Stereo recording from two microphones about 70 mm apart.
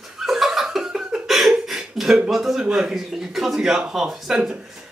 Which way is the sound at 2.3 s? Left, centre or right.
Centre.